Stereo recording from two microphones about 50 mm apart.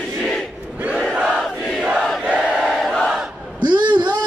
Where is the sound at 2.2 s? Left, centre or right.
Right.